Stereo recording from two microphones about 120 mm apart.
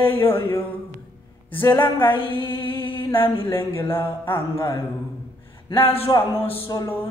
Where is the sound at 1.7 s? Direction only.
40° left (ahead or behind).